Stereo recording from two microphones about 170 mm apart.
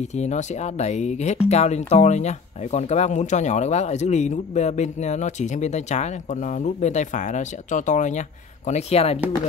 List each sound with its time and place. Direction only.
0.0 s speech: 40° left (ahead or behind)